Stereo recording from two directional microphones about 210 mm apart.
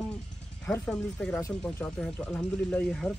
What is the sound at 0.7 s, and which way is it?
Speech, 5° left (ahead or behind).